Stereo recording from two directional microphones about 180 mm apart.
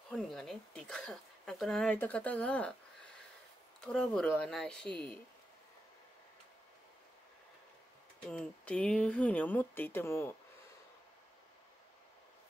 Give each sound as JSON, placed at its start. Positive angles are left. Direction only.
{"t": 0.1, "sound": "speech", "side_deg": 0}
{"t": 3.8, "sound": "speech", "side_deg": 5}
{"t": 4.8, "sound": "speech", "side_deg": -25}
{"t": 8.3, "sound": "speech", "side_deg": 5}